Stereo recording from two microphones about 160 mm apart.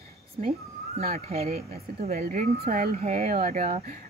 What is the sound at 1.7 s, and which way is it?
A woman's voice, 70° right (ahead or behind).